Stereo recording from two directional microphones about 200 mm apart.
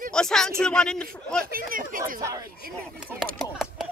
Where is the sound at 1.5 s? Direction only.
45° right (ahead or behind).